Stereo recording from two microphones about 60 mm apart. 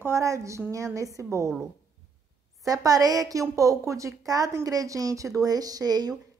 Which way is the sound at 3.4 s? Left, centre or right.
Right.